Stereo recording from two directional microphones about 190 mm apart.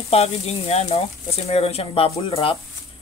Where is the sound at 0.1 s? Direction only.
35° left (ahead or behind).